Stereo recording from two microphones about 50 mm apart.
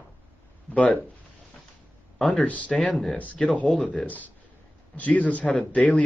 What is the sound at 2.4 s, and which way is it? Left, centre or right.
Speech, left.